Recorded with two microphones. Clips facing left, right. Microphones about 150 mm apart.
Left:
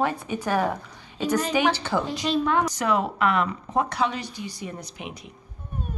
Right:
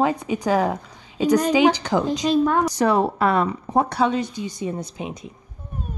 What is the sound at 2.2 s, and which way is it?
A woman's voice, 40° right (ahead or behind).